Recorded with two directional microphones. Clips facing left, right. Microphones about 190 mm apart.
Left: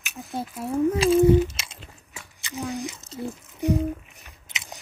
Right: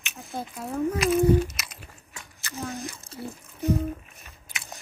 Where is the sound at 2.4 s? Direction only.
15° left (ahead or behind).